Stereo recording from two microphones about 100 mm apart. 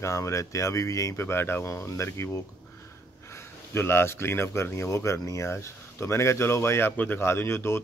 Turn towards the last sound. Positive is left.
turn(degrees=25)  # may be behind; listen again after turning